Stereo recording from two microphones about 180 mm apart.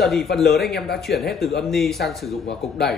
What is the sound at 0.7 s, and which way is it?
Speech, 60° left (ahead or behind).